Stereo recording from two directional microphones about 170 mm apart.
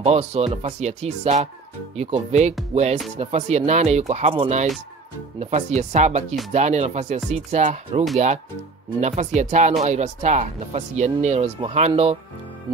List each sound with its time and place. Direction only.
0.0 s speech: 40° right (ahead or behind)
9.0 s speech: 45° right (ahead or behind)